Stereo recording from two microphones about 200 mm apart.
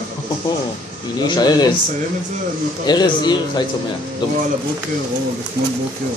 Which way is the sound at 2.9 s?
20° left (ahead or behind).